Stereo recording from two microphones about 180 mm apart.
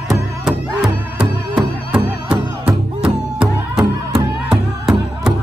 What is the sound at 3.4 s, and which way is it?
Music, 30° right (ahead or behind).